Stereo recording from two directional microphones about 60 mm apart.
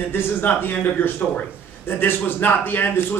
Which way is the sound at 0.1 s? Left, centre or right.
Left.